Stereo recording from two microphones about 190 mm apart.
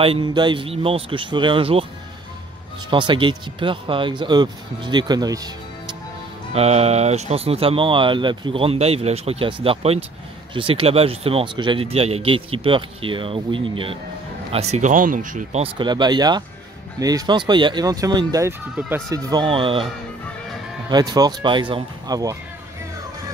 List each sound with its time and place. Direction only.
0.0 s speech: 25° right (ahead or behind)
2.9 s speech: 25° right (ahead or behind)
6.5 s speech: 35° right (ahead or behind)
20.9 s speech: 20° right (ahead or behind)